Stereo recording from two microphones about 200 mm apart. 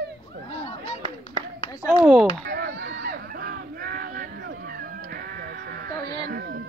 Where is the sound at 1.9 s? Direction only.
Centre (ahead or behind).